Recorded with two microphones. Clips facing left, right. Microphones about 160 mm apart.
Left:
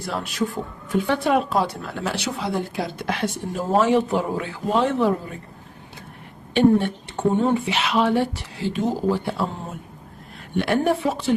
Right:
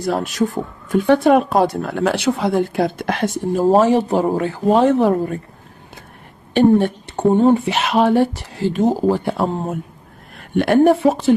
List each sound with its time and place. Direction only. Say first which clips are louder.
0.0 s speech: right 7 dB; 45° right (ahead or behind)
6.5 s speech: right 4 dB; 40° right (ahead or behind)